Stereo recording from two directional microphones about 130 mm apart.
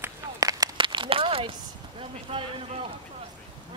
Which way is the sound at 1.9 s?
45° right (ahead or behind).